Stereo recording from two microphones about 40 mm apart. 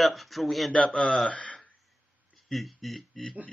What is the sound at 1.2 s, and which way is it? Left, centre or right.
Speech, left.